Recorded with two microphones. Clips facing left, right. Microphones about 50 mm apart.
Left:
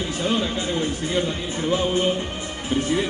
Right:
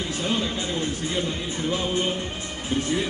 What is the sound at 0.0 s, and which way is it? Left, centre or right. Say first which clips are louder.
Speech: left 3 dB; centre.